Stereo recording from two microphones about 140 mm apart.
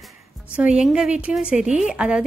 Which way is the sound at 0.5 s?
10° right (ahead or behind).